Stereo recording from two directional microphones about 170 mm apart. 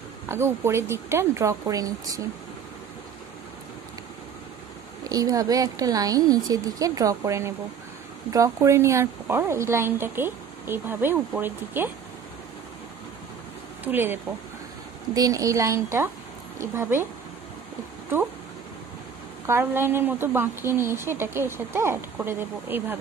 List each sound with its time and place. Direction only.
0.3 s a woman's voice: 15° right (ahead or behind)
5.0 s a woman's voice: 20° right (ahead or behind)
13.8 s a woman's voice: 10° right (ahead or behind)
19.4 s a woman's voice: 15° right (ahead or behind)